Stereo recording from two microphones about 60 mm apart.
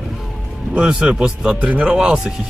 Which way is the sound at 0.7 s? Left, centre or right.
Centre.